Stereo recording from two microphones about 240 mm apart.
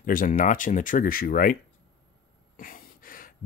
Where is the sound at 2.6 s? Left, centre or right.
Left.